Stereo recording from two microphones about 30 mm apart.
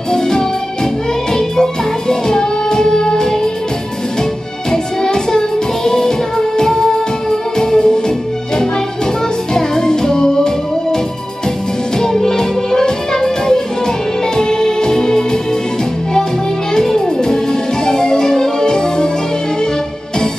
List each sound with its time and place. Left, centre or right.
0.1 s music: left
9.5 s music: left
12.0 s music: centre
16.7 s music: centre